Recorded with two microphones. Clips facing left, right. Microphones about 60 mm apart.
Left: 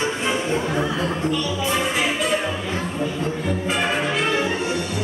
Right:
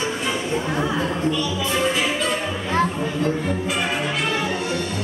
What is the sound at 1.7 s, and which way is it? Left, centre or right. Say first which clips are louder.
Music: right 2 dB; centre.